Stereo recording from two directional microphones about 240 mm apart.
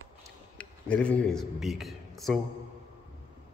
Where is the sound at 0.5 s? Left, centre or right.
Centre.